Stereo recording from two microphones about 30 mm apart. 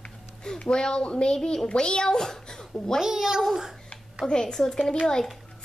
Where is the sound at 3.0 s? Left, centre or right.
Centre.